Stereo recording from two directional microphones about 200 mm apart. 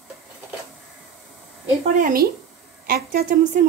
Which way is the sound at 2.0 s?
40° right (ahead or behind).